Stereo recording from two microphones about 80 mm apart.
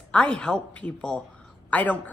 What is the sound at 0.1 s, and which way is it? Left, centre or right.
Speech, centre.